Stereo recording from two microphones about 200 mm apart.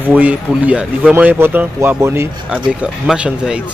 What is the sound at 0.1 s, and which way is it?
Speech, 5° right (ahead or behind).